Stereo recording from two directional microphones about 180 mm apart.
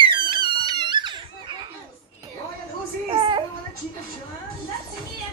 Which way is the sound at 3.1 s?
25° right (ahead or behind).